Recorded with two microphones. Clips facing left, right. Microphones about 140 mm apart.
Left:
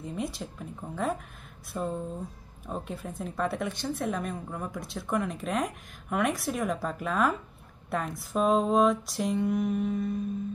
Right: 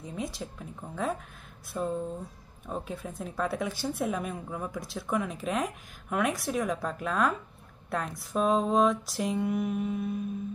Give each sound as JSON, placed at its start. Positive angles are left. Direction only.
{"t": 0.0, "sound": "speech", "side_deg": 0}